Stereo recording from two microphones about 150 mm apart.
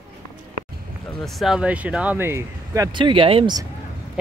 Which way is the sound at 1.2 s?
Centre (ahead or behind).